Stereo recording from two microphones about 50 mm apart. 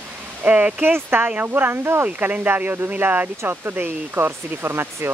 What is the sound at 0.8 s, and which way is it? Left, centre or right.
Speech, right.